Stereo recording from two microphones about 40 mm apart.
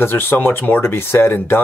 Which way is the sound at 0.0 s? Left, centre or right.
Left.